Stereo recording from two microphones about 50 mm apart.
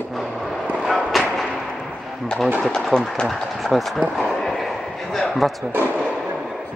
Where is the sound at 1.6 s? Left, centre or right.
Centre.